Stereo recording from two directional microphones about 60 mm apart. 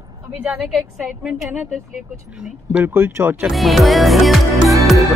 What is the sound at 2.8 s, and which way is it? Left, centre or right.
Speech, right.